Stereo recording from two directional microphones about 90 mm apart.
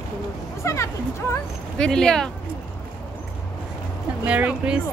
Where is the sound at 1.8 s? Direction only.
5° left (ahead or behind).